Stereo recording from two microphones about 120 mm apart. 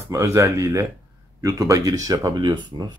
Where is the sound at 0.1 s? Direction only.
25° right (ahead or behind).